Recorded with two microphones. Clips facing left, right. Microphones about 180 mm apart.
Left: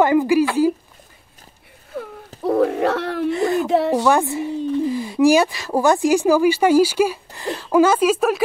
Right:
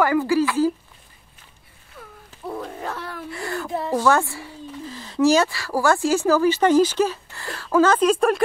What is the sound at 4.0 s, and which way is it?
Speech, 15° left (ahead or behind).